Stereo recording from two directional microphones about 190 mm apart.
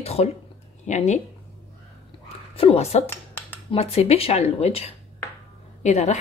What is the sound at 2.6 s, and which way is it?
Speech, 30° left (ahead or behind).